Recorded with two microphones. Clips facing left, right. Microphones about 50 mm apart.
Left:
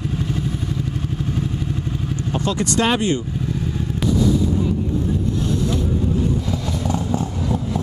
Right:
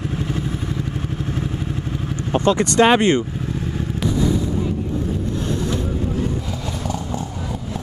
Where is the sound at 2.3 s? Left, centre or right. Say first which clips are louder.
Right 5 dB; right.